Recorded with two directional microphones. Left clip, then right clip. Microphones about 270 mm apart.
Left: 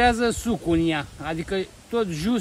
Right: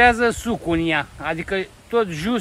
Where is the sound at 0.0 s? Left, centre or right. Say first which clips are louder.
Right 5 dB; centre.